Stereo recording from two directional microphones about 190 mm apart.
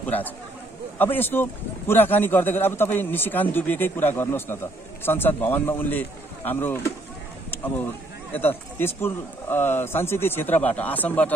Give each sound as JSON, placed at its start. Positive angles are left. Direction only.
{"t": 0.0, "sound": "a man's voice", "side_deg": 10}
{"t": 8.3, "sound": "a man's voice", "side_deg": 10}